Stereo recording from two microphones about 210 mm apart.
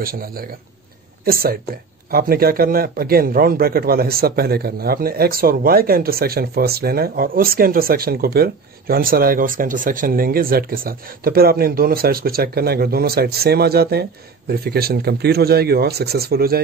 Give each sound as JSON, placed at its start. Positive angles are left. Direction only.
{"t": 0.0, "sound": "a man's voice", "side_deg": -45}